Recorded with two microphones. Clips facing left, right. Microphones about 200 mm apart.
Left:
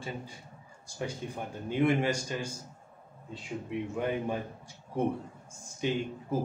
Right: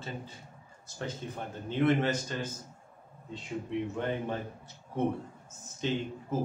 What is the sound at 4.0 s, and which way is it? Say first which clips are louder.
Speech: left 5 dB; 10° left (ahead or behind).